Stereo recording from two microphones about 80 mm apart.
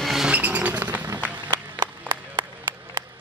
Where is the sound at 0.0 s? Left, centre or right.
Centre.